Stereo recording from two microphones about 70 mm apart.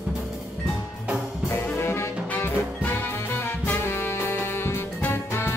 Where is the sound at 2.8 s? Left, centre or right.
Left.